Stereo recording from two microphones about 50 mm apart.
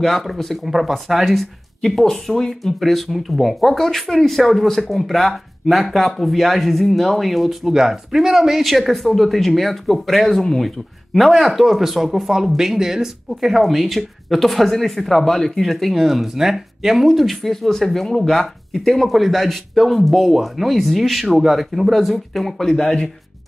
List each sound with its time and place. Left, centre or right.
0.2 s speech: centre
22.7 s speech: centre